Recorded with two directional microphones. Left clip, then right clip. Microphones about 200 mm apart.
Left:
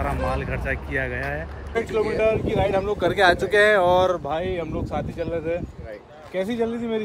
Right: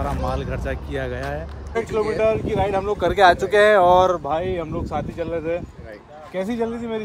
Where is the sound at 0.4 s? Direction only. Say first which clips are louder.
Left 1 dB; 70° right (ahead or behind).